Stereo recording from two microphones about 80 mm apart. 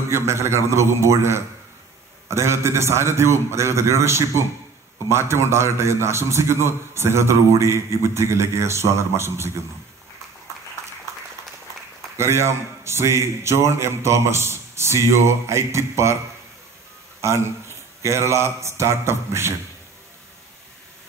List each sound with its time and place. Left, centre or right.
0.1 s a man's voice: right
12.2 s a man's voice: right
17.2 s a man's voice: right